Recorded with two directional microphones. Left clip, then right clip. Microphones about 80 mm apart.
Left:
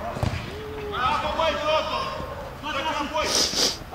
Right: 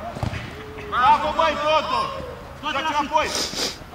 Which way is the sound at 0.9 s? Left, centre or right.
Right.